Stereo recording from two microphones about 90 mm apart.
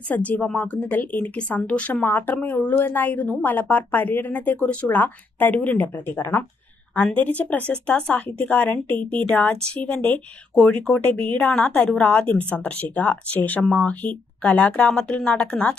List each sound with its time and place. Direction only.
0.1 s speech: 20° left (ahead or behind)